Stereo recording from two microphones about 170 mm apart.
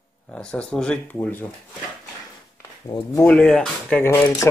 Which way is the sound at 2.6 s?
20° left (ahead or behind).